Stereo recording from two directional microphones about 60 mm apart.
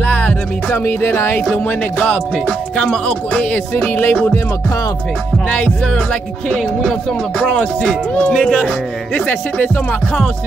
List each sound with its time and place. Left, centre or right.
0.0 s music: left
0.8 s speech: left
1.7 s music: left
3.9 s speech: left
5.5 s music: left
6.5 s music: centre
8.3 s speech: centre